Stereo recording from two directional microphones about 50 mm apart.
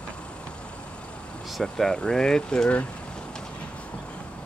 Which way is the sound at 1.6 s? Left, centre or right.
Centre.